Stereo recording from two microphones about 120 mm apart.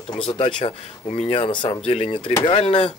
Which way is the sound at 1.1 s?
70° left (ahead or behind).